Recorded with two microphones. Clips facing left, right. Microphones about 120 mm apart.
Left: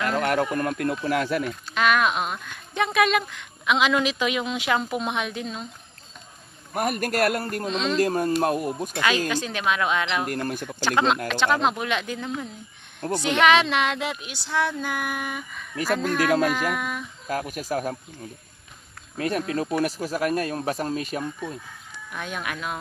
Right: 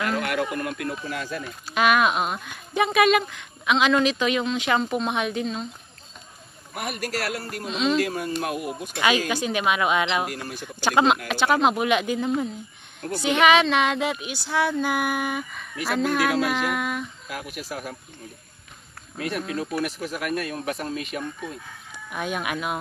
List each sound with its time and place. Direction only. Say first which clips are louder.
0.0 s speech: left 2 dB; 40° left (ahead or behind); by 1.5 s 65° left (ahead or behind)
1.7 s speech: right 2 dB; 10° right (ahead or behind)
6.7 s a man's voice: left 5 dB; 45° left (ahead or behind)
7.6 s speech: right 5 dB; 5° right (ahead or behind)
8.0 s a man's voice: left 4 dB; 40° left (ahead or behind)
9.3 s speech: right 2 dB; 10° right (ahead or behind)
10.3 s a man's voice: left 6 dB; 50° left (ahead or behind)
10.8 s speech: right 3 dB; 15° right (ahead or behind)
17.3 s a man's voice: left 10 dB; 45° left (ahead or behind)
19.1 s speech: left 3 dB; 40° left (ahead or behind)
21.9 s speech: right 4 dB; 15° right (ahead or behind)